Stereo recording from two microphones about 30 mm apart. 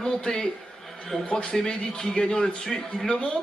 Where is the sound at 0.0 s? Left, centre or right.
Left.